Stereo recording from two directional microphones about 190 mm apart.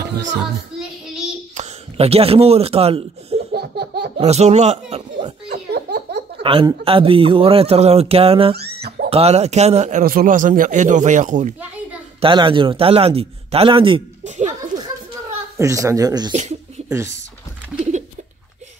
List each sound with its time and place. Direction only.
0.0 s children playing: 70° right (ahead or behind)
1.6 s a man's voice: 30° right (ahead or behind)
3.5 s laughter: 60° right (ahead or behind)
4.2 s a man's voice: 35° right (ahead or behind)
5.5 s laughter: 60° right (ahead or behind)
6.4 s speech: 25° right (ahead or behind)
8.5 s a sound: 55° right (ahead or behind)
9.1 s a man's voice: 35° right (ahead or behind)
12.2 s speech: 25° right (ahead or behind)
14.2 s a sound: 40° right (ahead or behind)
15.5 s speech: 15° right (ahead or behind)
16.3 s a sound: 35° right (ahead or behind)
17.9 s a sound: 40° right (ahead or behind)